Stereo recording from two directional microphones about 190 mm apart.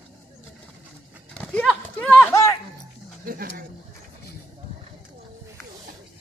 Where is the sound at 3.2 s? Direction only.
50° right (ahead or behind).